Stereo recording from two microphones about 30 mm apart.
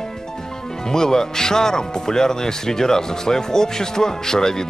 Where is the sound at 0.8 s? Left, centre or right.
Centre.